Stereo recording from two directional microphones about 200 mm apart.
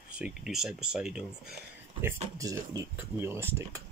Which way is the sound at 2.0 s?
15° right (ahead or behind).